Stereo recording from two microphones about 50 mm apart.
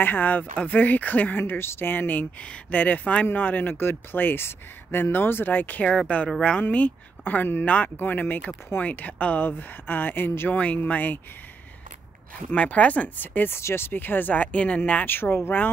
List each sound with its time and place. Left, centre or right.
0.0 s speech: left
1.4 s speech: left
9.5 s speech: left
10.5 s speech: left
12.4 s speech: left
13.6 s speech: left
15.0 s speech: left